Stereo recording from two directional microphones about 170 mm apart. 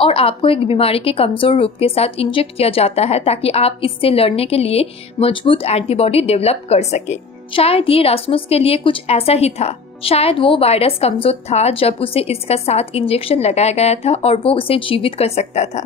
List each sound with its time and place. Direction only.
0.0 s speech: 35° left (ahead or behind)